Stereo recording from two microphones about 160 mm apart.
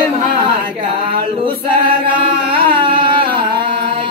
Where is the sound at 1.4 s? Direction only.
30° right (ahead or behind).